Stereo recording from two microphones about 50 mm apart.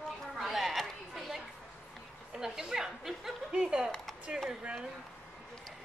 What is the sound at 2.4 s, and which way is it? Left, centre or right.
Speech, centre.